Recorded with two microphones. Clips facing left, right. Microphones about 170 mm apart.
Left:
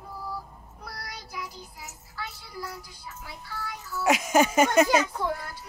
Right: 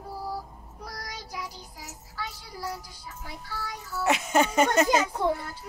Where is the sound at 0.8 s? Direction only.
40° right (ahead or behind).